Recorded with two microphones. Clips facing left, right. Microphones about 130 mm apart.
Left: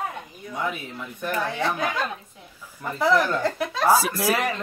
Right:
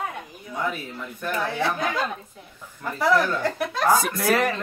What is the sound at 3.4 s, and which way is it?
Speech, 5° left (ahead or behind).